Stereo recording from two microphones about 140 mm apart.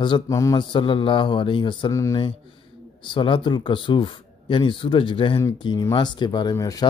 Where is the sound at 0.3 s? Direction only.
25° left (ahead or behind).